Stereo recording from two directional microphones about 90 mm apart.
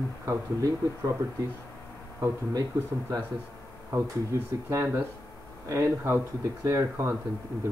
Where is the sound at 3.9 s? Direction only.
25° right (ahead or behind).